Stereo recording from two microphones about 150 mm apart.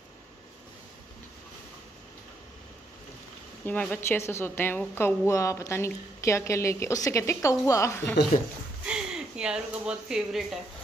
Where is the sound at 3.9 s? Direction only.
15° left (ahead or behind).